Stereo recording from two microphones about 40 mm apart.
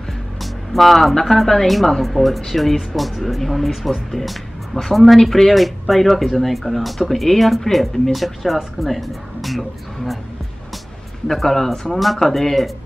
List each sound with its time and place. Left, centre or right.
0.4 s speech: centre
11.3 s speech: centre